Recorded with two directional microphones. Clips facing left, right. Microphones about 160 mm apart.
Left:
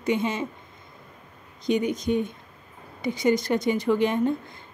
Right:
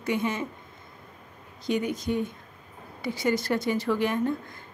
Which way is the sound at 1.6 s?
20° left (ahead or behind).